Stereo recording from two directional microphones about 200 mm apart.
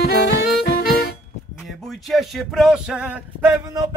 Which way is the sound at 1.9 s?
Centre (ahead or behind).